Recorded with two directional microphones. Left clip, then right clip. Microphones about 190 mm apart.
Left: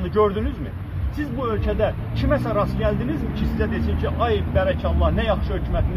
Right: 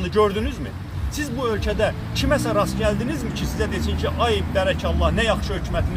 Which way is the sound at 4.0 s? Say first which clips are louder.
Right 1 dB; 15° right (ahead or behind).